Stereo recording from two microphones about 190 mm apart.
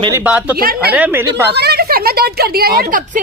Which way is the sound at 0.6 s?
50° right (ahead or behind).